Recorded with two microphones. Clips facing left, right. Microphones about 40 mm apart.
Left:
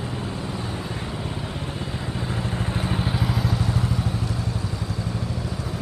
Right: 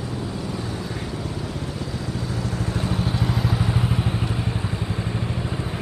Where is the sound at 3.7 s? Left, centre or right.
Right.